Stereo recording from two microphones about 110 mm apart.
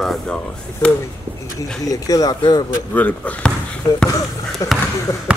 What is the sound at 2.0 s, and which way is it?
Speech, 35° left (ahead or behind).